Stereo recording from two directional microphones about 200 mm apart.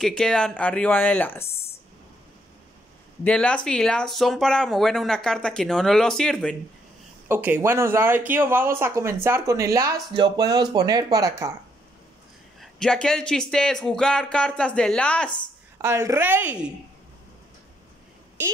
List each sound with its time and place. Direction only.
0.0 s speech: 5° left (ahead or behind)
3.3 s speech: 5° left (ahead or behind)
7.2 s speech: 10° right (ahead or behind)
12.5 s speech: 5° left (ahead or behind)
15.8 s speech: 15° right (ahead or behind)